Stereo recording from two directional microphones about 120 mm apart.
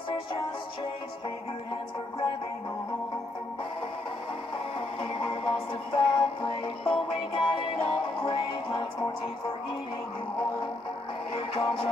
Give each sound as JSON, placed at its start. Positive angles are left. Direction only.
{"t": 4.7, "sound": "music", "side_deg": 50}
{"t": 11.3, "sound": "music", "side_deg": 50}